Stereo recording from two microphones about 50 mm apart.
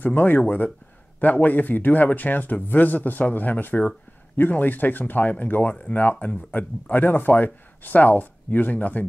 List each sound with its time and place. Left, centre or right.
0.0 s speech: left